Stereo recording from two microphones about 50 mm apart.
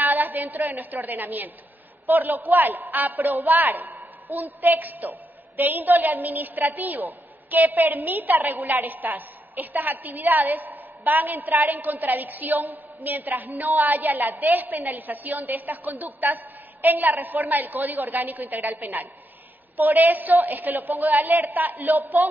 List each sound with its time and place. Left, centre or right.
0.0 s a woman's voice: right